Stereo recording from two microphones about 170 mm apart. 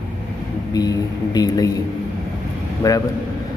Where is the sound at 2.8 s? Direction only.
20° left (ahead or behind).